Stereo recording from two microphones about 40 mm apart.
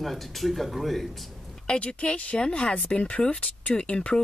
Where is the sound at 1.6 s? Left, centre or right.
Left.